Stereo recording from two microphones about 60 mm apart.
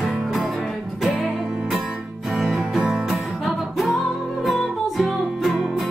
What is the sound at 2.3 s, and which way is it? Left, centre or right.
Music, centre.